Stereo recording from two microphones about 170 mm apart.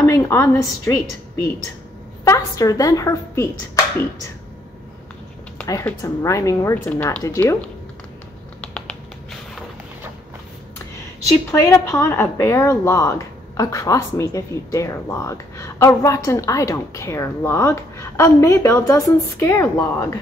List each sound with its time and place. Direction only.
0.0 s a woman's voice: 20° left (ahead or behind)
2.2 s a woman's voice: 20° left (ahead or behind)
5.9 s a woman's voice: 20° left (ahead or behind)
8.5 s finger snapping: 5° left (ahead or behind)
11.6 s a woman's voice: 20° left (ahead or behind)